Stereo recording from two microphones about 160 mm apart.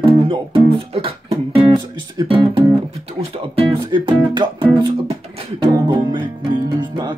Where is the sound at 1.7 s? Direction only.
30° right (ahead or behind).